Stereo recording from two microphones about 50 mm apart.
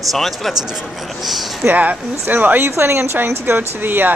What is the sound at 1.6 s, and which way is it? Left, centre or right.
Speech, right.